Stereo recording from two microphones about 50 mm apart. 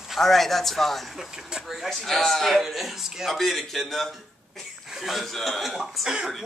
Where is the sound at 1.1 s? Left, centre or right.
Centre.